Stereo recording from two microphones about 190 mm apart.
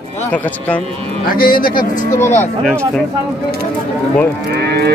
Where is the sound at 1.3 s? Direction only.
50° left (ahead or behind).